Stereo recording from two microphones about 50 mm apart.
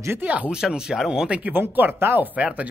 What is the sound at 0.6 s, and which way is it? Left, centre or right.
Speech, centre.